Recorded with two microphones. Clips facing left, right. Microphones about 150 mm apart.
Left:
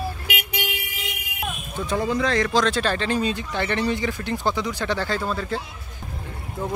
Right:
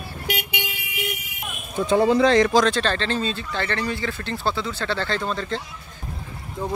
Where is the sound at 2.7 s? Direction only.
10° left (ahead or behind).